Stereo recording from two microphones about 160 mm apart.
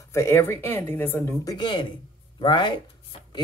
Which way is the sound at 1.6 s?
30° left (ahead or behind).